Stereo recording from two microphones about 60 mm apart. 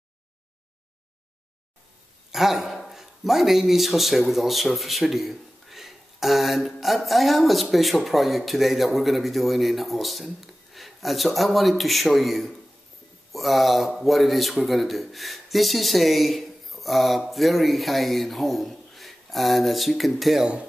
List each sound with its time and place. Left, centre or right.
2.3 s speech: centre